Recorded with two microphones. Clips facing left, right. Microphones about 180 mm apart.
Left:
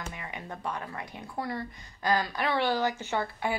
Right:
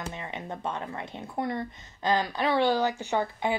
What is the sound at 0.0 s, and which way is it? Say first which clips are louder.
Speech: right 3 dB; 25° right (ahead or behind).